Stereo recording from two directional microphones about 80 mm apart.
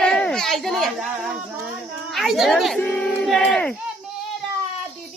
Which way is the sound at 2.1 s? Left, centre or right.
Centre.